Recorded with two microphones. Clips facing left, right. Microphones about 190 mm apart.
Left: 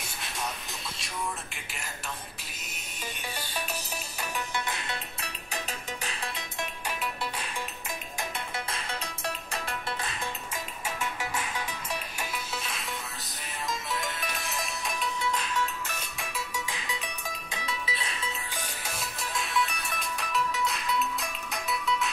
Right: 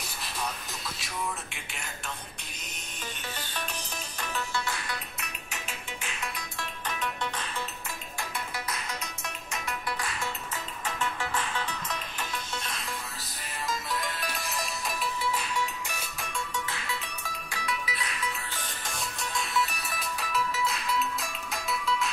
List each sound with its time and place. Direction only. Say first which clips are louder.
0.9 s a sound: even; centre (ahead or behind)
4.6 s music: even; 20° left (ahead or behind)
6.6 s music: even; 10° left (ahead or behind)
8.2 s music: even; 30° left (ahead or behind)
11.0 s music: right 2 dB; 10° left (ahead or behind); by 16.0 s 10° right (ahead or behind)
16.2 s music: right 1 dB; 5° left (ahead or behind); by 18.3 s 25° left (ahead or behind)
18.5 s music: left 1 dB; 10° left (ahead or behind)